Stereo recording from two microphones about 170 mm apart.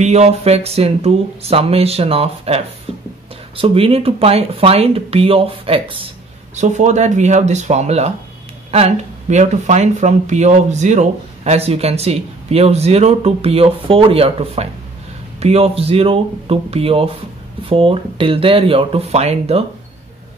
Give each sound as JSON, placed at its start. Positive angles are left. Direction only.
{"t": 0.0, "sound": "speech", "side_deg": -40}
{"t": 6.5, "sound": "speech", "side_deg": -45}